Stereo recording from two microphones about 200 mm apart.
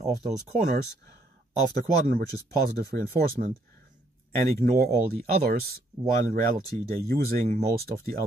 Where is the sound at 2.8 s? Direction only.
50° right (ahead or behind).